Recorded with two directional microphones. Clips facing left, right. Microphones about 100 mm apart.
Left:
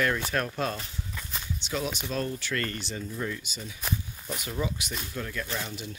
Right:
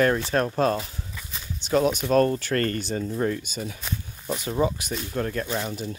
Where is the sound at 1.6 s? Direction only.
45° right (ahead or behind).